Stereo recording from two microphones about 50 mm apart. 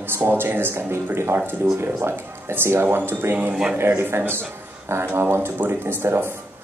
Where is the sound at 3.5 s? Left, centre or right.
Centre.